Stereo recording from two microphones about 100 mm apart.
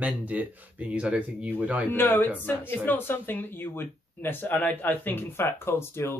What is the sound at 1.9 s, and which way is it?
Speech, 20° left (ahead or behind).